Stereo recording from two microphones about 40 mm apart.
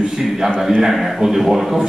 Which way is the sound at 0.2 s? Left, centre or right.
Centre.